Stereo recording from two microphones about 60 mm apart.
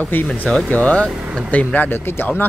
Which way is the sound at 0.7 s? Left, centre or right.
Left.